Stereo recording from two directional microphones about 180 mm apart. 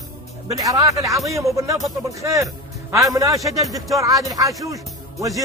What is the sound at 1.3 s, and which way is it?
A man's voice, 15° right (ahead or behind).